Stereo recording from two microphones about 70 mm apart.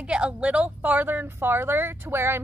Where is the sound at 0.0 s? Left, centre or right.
Centre.